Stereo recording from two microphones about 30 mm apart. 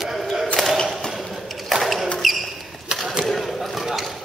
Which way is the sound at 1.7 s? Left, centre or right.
Centre.